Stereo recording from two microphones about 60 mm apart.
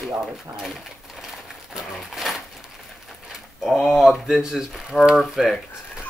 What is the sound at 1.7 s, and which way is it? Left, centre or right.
Pigeon, centre.